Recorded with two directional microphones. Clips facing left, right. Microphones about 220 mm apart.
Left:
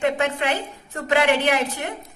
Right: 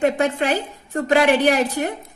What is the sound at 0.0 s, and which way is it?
A woman's voice, 35° right (ahead or behind).